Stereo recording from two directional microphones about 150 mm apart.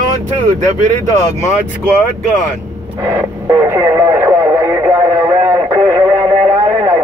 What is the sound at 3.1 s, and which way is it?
Radio, 20° right (ahead or behind).